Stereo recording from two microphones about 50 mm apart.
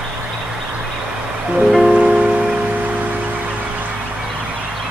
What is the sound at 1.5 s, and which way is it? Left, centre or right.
Music, centre.